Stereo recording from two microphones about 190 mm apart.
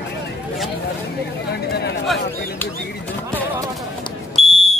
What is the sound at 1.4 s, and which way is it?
Speech, 60° left (ahead or behind).